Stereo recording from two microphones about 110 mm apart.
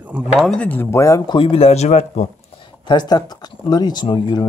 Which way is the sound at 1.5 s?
70° left (ahead or behind).